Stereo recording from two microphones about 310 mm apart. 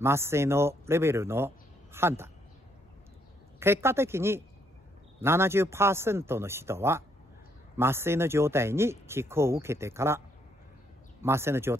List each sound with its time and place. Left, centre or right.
0.0 s speech: centre
3.5 s speech: centre